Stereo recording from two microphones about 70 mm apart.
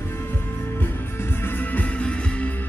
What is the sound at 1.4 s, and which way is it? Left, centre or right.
Music, left.